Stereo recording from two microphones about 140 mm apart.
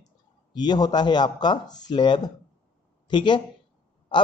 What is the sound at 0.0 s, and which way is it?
A man's voice, 30° left (ahead or behind).